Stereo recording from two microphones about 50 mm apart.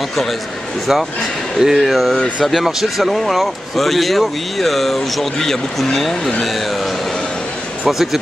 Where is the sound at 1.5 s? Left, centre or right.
Centre.